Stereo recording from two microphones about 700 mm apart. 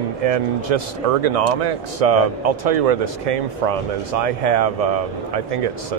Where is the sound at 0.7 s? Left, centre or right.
Right.